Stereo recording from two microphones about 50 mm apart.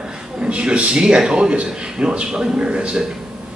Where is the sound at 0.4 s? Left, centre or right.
Centre.